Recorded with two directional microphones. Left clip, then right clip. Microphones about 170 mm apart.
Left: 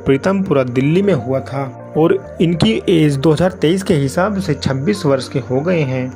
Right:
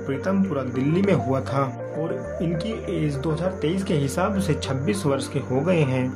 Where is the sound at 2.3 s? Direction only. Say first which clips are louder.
Left 11 dB; 50° left (ahead or behind).